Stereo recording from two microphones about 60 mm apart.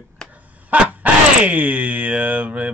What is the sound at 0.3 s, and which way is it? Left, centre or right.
Speech, right.